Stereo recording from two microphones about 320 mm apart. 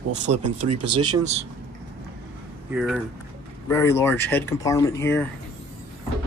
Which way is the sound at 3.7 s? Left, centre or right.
Centre.